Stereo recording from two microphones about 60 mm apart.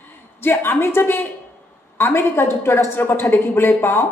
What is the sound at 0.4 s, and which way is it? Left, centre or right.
A man's voice, left.